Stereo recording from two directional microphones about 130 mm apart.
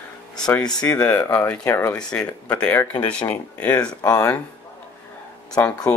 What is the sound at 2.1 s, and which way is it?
Speech, 10° left (ahead or behind).